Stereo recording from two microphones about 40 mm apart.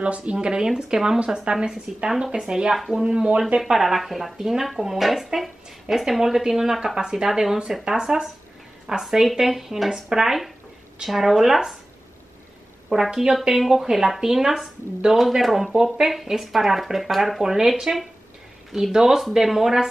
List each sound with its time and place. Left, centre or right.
0.3 s speech: right
3.7 s speech: centre
7.2 s speech: centre
12.9 s speech: centre
17.4 s speech: centre